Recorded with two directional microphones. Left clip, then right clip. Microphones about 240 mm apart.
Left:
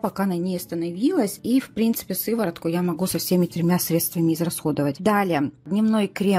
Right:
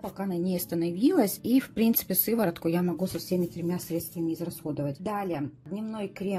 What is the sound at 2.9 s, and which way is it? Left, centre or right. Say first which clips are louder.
A woman's voice: left 6 dB; left.